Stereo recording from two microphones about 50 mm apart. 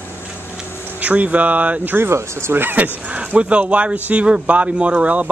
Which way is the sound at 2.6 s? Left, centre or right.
Right.